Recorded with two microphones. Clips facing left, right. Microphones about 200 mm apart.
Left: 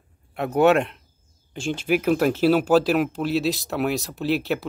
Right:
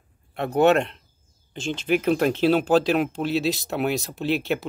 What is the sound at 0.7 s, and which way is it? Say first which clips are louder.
Speech: left 1 dB; 5° left (ahead or behind).